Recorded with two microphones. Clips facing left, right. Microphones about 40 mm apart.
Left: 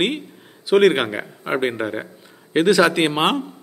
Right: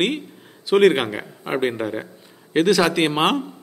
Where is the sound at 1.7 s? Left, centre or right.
Centre.